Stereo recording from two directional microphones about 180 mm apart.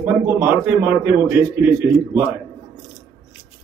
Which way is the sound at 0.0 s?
10° right (ahead or behind).